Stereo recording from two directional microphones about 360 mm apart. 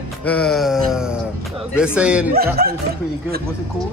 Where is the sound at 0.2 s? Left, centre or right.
Centre.